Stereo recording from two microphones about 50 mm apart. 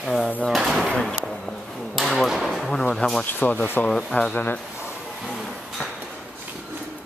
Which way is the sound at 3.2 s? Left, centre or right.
Left.